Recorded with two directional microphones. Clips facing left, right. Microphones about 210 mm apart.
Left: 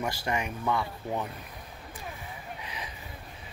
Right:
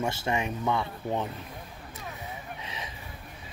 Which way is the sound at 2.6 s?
25° right (ahead or behind).